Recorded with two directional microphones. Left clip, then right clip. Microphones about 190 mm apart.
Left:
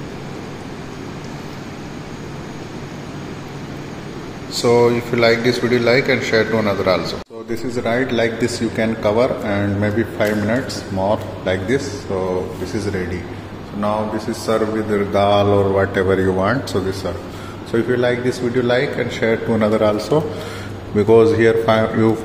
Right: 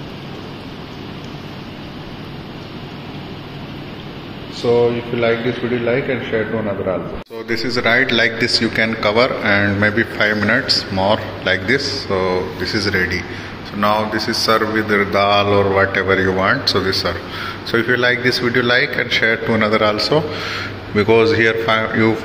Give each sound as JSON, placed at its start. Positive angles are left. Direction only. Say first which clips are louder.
{"t": 4.6, "sound": "a man's voice", "louder": "left 1 dB", "side_deg": 10}
{"t": 7.4, "sound": "a man's voice", "louder": "right 5 dB", "side_deg": 10}